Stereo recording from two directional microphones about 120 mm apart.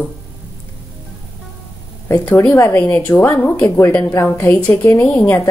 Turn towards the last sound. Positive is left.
turn(degrees=15)  # may be behind; listen again after turning